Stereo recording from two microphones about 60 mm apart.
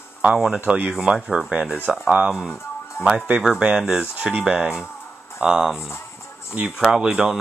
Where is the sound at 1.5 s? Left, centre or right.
Centre.